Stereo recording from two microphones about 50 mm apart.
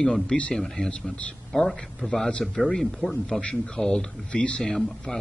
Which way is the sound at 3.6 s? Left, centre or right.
Centre.